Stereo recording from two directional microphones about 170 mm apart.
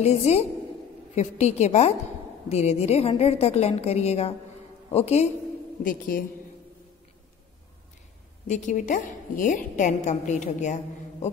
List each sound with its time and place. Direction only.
0.0 s a woman's voice: 40° left (ahead or behind)
5.9 s a man's voice: 55° left (ahead or behind)
8.5 s a woman's voice: 45° left (ahead or behind)